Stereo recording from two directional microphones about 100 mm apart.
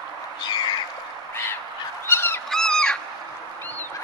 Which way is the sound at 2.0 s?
25° left (ahead or behind).